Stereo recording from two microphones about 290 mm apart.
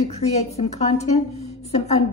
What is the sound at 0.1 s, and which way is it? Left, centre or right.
A woman's voice, left.